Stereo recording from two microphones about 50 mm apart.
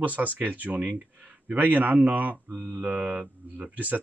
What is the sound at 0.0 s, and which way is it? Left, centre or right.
Speech, right.